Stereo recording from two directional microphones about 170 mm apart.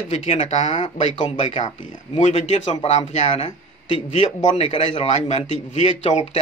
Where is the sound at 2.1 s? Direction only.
35° left (ahead or behind).